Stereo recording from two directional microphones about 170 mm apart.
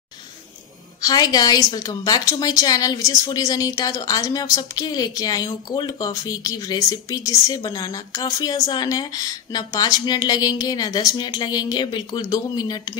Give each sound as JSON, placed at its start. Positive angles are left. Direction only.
{"t": 1.0, "sound": "a woman's voice", "side_deg": 25}